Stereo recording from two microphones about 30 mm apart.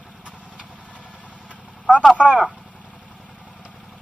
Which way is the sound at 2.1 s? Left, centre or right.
Right.